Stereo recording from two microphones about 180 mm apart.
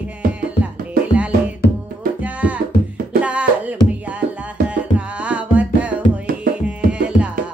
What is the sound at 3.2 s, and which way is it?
Music, 5° right (ahead or behind).